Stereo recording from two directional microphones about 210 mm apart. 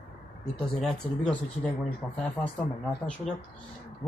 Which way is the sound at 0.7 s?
5° left (ahead or behind).